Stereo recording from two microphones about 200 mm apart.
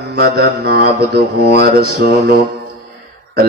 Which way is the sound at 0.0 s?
50° right (ahead or behind).